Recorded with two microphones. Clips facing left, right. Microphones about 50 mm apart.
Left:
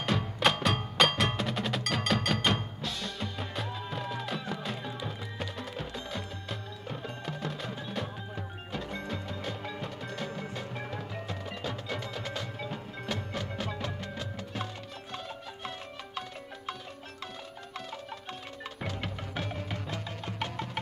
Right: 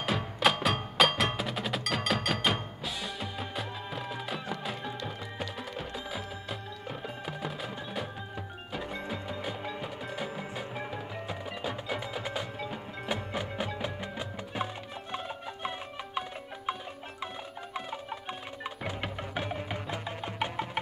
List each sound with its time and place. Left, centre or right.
0.0 s percussion: centre
8.7 s music: centre
18.9 s music: centre